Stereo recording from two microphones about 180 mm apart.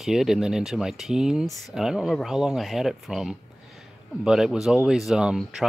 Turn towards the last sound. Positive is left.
turn(degrees=0)  # may be behind; listen again after turning